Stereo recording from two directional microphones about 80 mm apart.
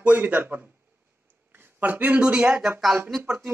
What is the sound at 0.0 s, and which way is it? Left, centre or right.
Speech, right.